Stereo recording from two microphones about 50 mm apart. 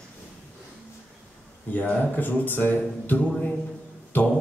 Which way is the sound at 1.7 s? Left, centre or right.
Left.